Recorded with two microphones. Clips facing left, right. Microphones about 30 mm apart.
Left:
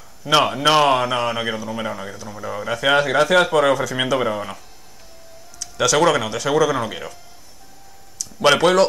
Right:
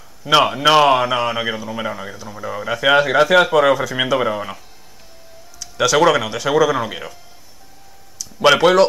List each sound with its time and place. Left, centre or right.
0.2 s a man's voice: centre
5.6 s a man's voice: centre
8.2 s speech: centre